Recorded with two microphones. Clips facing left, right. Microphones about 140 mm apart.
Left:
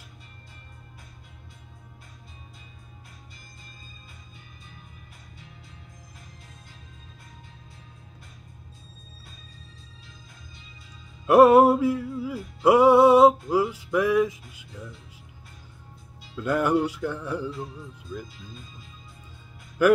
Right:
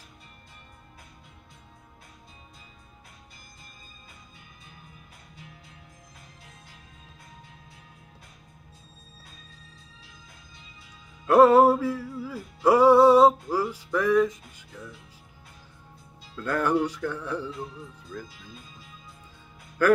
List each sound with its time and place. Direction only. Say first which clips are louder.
11.2 s music: left 1 dB; 15° left (ahead or behind)
16.3 s music: left 2 dB; 15° left (ahead or behind)
19.8 s music: left 2 dB; 15° left (ahead or behind)